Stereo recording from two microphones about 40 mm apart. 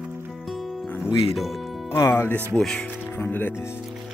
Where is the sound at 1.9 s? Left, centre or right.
Left.